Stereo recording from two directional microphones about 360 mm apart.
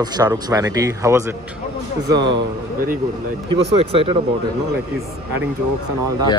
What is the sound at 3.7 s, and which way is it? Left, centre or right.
Speech, centre.